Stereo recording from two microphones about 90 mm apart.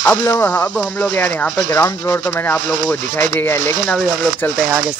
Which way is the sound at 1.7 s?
35° left (ahead or behind).